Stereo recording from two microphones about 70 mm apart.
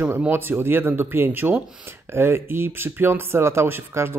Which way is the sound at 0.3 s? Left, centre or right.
Right.